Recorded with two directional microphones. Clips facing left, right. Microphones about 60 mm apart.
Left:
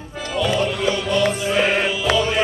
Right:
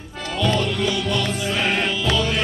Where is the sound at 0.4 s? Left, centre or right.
Centre.